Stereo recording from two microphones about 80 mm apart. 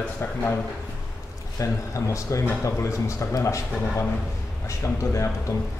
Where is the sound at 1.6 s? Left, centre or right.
Left.